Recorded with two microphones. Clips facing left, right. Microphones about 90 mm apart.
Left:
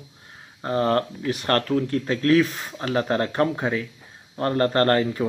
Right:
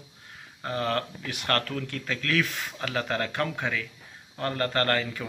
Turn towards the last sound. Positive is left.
turn(degrees=35)  # may be behind; listen again after turning